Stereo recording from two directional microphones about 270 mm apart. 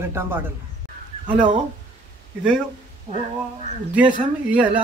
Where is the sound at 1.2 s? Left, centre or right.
Right.